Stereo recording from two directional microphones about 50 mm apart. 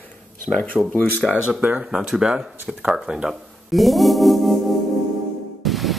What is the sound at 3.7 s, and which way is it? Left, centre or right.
Organ, centre.